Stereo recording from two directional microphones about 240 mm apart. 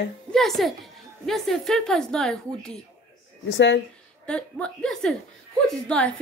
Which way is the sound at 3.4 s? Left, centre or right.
Left.